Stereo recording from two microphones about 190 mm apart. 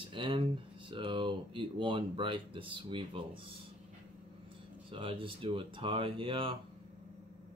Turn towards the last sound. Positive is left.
turn(degrees=-25)  # may be behind; listen again after turning